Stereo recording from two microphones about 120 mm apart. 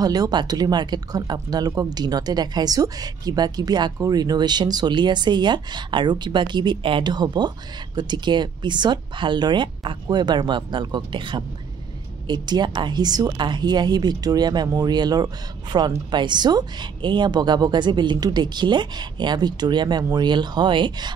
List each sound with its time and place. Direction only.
0.0 s speech: 30° right (ahead or behind)